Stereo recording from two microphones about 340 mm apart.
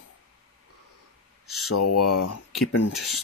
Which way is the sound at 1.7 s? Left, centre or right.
Left.